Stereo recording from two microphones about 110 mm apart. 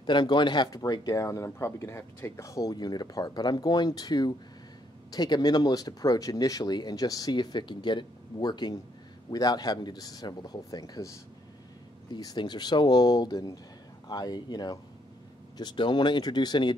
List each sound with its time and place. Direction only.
0.0 s speech: 45° left (ahead or behind)